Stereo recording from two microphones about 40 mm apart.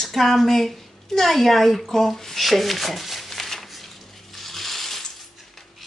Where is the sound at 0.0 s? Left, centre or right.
Centre.